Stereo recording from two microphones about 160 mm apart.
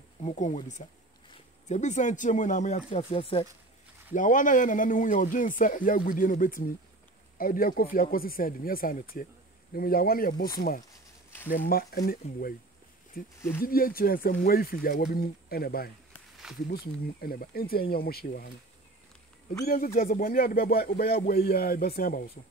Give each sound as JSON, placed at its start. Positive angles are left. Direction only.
{"t": 0.2, "sound": "speech", "side_deg": 45}
{"t": 2.9, "sound": "speech", "side_deg": 35}
{"t": 4.1, "sound": "speech", "side_deg": 55}
{"t": 11.5, "sound": "speech", "side_deg": 65}
{"t": 19.6, "sound": "speech", "side_deg": 60}